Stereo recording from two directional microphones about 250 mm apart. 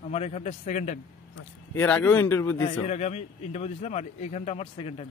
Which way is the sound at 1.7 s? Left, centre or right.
Centre.